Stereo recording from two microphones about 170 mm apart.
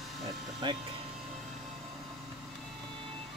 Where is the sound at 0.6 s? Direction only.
25° right (ahead or behind).